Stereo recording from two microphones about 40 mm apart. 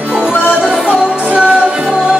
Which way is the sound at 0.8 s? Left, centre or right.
Right.